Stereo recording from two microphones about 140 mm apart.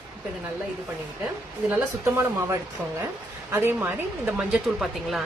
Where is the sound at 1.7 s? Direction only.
15° right (ahead or behind).